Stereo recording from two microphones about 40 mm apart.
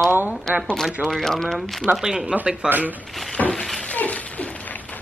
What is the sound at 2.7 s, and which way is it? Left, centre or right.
Speech, right.